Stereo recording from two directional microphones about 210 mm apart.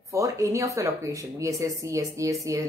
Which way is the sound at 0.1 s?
15° right (ahead or behind).